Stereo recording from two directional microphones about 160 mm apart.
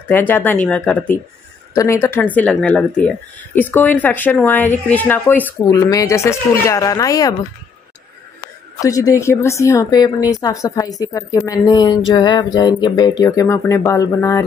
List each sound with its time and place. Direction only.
0.1 s a woman's voice: 10° left (ahead or behind)
8.7 s a woman's voice: 20° left (ahead or behind)